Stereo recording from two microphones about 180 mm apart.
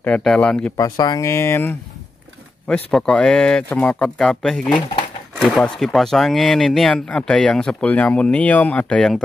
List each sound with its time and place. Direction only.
0.0 s speech: 5° left (ahead or behind)
0.7 s speech: 20° left (ahead or behind); by 9.2 s 5° left (ahead or behind)